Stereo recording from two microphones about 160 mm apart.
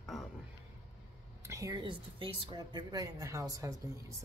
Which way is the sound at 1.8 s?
30° right (ahead or behind).